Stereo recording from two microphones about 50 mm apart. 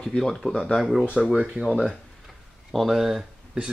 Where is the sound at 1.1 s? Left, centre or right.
Centre.